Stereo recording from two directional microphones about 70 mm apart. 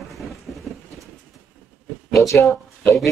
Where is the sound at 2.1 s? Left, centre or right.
Left.